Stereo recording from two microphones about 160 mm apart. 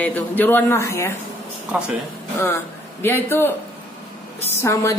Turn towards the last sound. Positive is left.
turn(degrees=15)  # may be behind; listen again after turning